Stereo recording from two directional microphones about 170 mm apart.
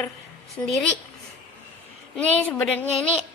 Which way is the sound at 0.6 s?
15° left (ahead or behind).